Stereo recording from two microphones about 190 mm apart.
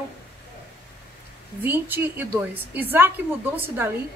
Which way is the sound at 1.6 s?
10° right (ahead or behind).